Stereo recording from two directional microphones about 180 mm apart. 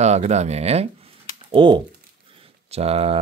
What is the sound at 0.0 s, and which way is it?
Speech, 40° right (ahead or behind).